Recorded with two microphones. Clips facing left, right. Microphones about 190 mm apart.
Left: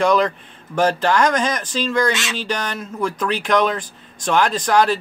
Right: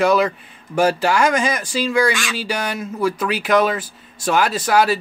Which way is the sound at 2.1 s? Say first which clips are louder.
Even; 20° left (ahead or behind).